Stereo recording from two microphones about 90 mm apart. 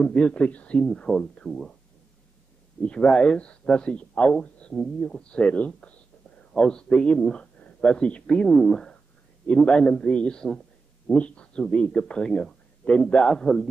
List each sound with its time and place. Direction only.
0.0 s speech: 10° left (ahead or behind)
2.8 s speech: 10° left (ahead or behind)